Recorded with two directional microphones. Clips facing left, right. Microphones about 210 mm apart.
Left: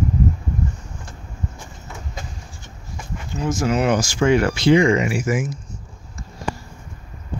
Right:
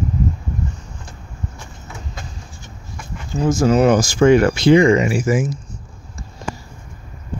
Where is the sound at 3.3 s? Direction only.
40° right (ahead or behind).